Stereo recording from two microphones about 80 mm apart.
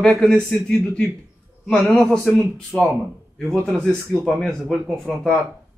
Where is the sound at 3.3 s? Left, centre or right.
Centre.